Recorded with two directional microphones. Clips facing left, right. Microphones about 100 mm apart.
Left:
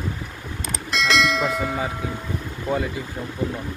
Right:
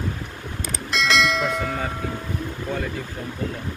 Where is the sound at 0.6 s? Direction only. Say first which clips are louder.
Even; centre (ahead or behind).